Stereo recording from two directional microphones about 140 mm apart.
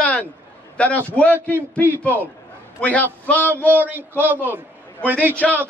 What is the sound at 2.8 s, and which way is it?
Speech, 10° left (ahead or behind).